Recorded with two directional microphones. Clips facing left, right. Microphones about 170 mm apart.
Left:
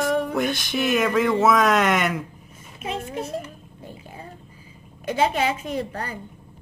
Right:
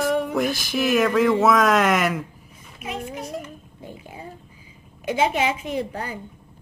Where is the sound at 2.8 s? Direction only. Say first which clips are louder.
Left 2 dB; 30° left (ahead or behind).